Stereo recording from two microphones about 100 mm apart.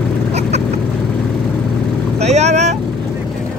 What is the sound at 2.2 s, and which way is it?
Vehicle, 90° right.